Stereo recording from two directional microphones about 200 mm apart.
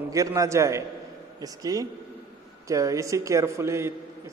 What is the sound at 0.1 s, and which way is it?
A man's voice, 15° right (ahead or behind).